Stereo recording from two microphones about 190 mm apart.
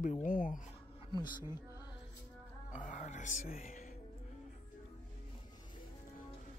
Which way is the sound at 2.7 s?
40° left (ahead or behind).